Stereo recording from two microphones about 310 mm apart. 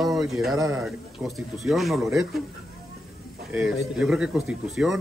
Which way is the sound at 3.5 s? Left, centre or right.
Centre.